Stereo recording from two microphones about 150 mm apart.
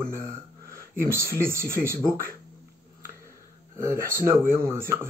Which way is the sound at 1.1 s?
15° right (ahead or behind).